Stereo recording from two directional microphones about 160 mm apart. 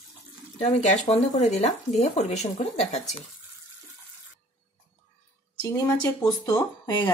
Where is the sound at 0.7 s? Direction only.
45° left (ahead or behind).